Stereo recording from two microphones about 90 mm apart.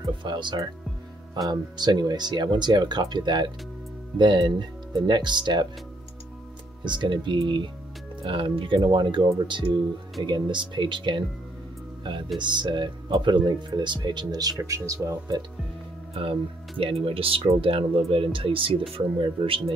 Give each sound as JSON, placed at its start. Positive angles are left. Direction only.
{"t": 0.0, "sound": "music", "side_deg": -60}
{"t": 1.5, "sound": "speech", "side_deg": -55}
{"t": 6.8, "sound": "speech", "side_deg": -60}
{"t": 12.4, "sound": "speech", "side_deg": -60}
{"t": 16.2, "sound": "speech", "side_deg": -90}